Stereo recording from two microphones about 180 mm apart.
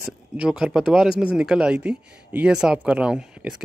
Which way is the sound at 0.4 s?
5° right (ahead or behind).